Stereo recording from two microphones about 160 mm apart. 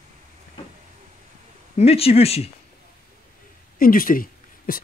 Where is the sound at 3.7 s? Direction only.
65° left (ahead or behind).